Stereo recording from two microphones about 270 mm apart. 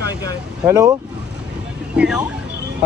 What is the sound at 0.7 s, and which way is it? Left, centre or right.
Speech, centre.